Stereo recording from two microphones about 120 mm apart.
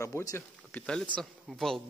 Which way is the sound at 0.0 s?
25° left (ahead or behind).